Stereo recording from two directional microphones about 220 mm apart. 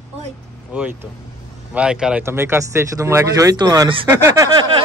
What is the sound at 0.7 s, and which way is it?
Speech, 5° right (ahead or behind).